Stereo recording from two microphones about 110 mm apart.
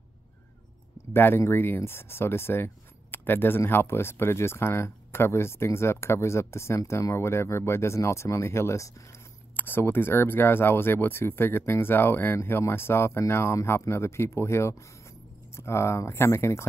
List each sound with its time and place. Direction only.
1.1 s speech: 20° left (ahead or behind)